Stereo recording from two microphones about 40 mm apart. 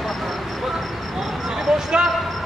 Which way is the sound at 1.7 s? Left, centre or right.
Centre.